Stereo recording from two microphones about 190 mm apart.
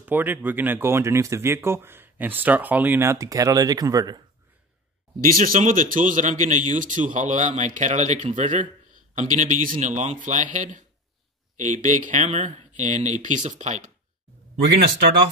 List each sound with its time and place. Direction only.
0.0 s speech: 10° right (ahead or behind)
5.2 s a man's voice: 45° right (ahead or behind)